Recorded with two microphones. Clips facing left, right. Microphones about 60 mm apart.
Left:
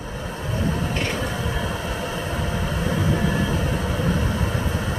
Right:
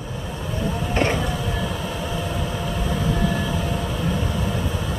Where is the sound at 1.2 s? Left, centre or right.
Left.